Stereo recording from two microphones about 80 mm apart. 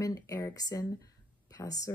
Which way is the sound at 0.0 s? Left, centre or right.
Left.